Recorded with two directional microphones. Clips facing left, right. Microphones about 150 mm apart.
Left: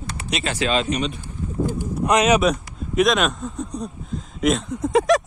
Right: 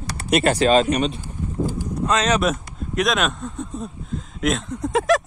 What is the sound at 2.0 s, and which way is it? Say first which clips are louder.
Speech: left 3 dB; 15° left (ahead or behind).